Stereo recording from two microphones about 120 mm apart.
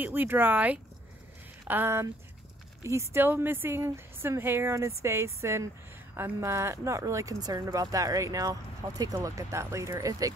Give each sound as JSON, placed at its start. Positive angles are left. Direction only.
{"t": 0.0, "sound": "speech", "side_deg": -15}